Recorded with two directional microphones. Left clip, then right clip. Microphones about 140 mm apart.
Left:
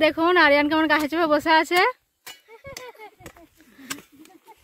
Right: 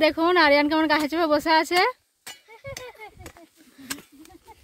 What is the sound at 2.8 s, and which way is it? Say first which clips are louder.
Chop: even; 90° left.